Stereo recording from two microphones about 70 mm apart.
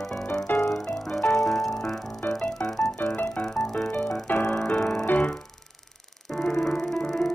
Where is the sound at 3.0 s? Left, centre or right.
Left.